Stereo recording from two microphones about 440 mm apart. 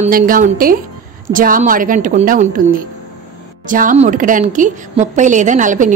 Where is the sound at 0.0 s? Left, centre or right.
Centre.